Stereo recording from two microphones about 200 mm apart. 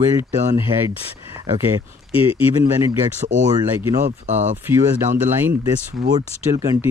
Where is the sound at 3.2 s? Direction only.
35° right (ahead or behind).